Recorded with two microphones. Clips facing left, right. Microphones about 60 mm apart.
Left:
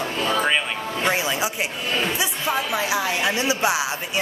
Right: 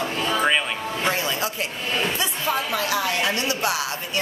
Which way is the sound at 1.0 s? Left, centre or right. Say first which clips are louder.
Left 2 dB; centre.